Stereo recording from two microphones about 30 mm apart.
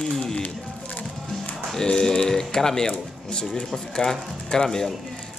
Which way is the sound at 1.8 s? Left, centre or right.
Left.